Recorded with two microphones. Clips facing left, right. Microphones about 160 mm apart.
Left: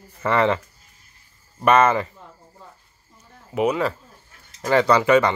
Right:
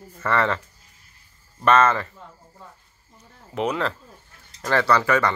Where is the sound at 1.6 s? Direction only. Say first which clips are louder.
Left 2 dB; 15° left (ahead or behind).